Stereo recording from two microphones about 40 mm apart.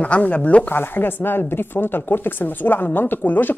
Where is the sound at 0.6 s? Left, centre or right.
Left.